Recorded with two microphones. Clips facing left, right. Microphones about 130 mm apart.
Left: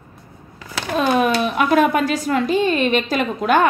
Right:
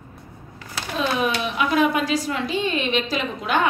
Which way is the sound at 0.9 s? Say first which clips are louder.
Left 6 dB; 50° left (ahead or behind).